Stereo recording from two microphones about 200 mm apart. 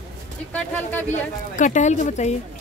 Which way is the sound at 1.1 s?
40° left (ahead or behind).